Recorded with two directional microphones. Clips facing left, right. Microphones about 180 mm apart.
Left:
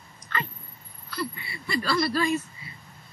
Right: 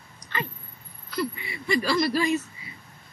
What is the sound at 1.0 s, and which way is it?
Speech, 20° right (ahead or behind).